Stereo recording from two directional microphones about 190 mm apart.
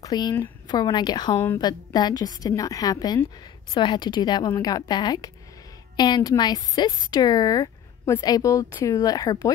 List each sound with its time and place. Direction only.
0.0 s speech: 20° left (ahead or behind)